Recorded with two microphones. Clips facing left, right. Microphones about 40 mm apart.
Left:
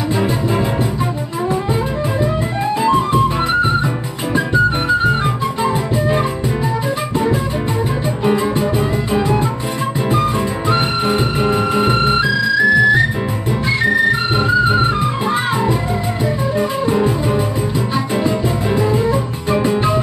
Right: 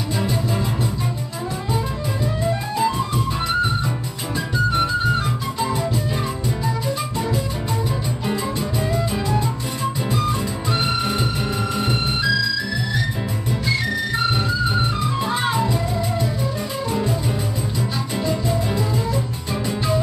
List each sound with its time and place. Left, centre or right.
0.1 s music: left
2.9 s music: left
8.2 s music: left
10.7 s music: left